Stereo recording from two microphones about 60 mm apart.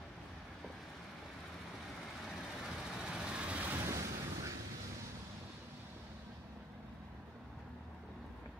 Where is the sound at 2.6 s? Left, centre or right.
Centre; by 3.8 s right.